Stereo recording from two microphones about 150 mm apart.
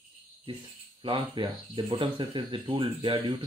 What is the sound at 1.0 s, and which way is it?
Speech, 35° right (ahead or behind).